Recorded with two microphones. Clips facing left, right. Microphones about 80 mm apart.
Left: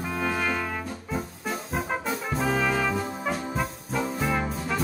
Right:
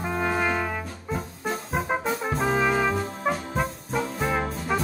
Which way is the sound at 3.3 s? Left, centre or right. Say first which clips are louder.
Right 1 dB; centre.